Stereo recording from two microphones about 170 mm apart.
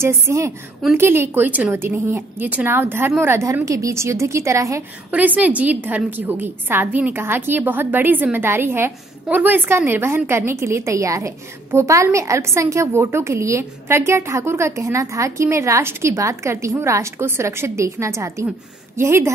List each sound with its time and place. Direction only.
0.0 s a woman's voice: 15° right (ahead or behind)